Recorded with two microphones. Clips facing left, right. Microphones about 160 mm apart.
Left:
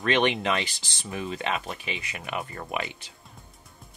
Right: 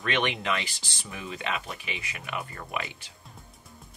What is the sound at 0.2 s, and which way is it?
Speech, 25° left (ahead or behind).